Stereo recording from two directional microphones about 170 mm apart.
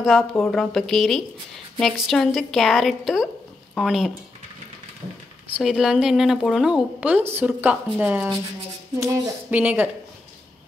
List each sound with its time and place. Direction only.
0.0 s a woman's voice: centre (ahead or behind)
5.6 s a woman's voice: centre (ahead or behind)
9.0 s a sound: 15° right (ahead or behind)